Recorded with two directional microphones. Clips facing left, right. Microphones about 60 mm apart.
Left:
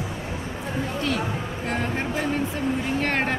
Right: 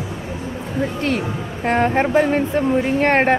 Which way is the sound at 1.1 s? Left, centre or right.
Right.